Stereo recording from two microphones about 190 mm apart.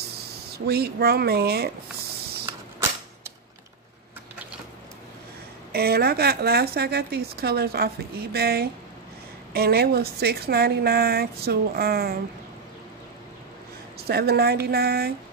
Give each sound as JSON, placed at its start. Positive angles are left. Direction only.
{"t": 0.2, "sound": "speech", "side_deg": -55}
{"t": 5.7, "sound": "speech", "side_deg": -55}
{"t": 13.9, "sound": "speech", "side_deg": -55}